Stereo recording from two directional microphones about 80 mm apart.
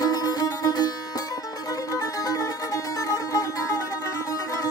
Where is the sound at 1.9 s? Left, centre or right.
Left.